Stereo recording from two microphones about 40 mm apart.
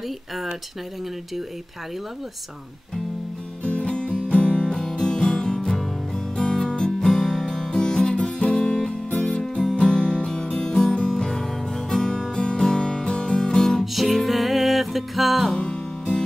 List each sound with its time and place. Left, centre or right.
3.6 s music: left
5.7 s music: centre
6.3 s music: left
9.4 s music: centre
9.8 s music: left
13.7 s music: centre
15.5 s music: left